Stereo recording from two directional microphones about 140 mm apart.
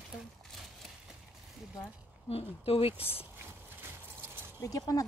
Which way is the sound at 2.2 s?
45° left (ahead or behind).